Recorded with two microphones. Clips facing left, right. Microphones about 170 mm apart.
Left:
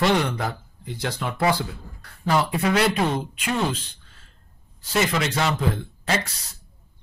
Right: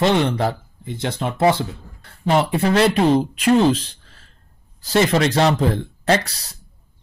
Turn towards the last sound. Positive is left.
turn(degrees=-35)  # may be behind; listen again after turning